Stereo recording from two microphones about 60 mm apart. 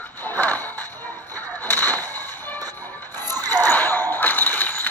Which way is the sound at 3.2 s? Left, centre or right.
Right.